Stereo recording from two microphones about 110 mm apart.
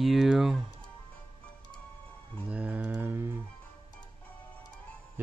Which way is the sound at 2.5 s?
15° right (ahead or behind).